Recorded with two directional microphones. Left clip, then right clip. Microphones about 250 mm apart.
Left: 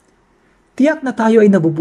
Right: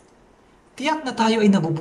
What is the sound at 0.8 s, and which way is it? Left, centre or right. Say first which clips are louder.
Speech: left 7 dB; left.